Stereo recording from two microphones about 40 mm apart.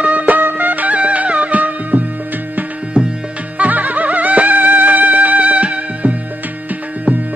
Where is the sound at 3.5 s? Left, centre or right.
Right.